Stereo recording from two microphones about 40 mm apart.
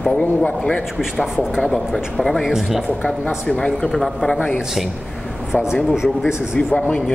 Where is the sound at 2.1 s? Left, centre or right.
Centre.